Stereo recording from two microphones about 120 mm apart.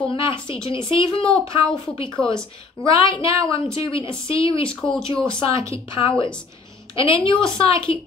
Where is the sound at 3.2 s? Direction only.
25° right (ahead or behind).